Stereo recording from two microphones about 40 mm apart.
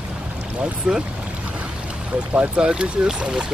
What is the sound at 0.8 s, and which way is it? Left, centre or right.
Speech, right.